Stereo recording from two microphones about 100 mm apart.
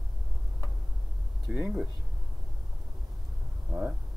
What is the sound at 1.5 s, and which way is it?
Speech, 10° right (ahead or behind).